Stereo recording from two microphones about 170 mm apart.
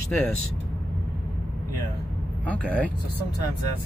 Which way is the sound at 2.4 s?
10° left (ahead or behind).